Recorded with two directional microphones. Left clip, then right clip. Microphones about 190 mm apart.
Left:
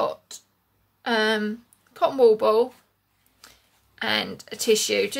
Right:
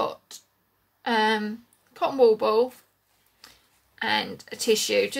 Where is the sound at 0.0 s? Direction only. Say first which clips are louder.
Left 2 dB; 15° left (ahead or behind).